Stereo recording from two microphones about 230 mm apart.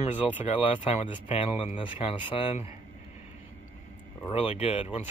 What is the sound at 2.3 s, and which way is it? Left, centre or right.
Speech, left.